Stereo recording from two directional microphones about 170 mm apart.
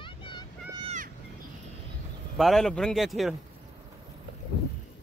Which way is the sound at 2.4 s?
Centre (ahead or behind).